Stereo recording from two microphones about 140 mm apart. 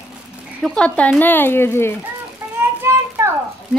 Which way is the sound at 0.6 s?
5° left (ahead or behind).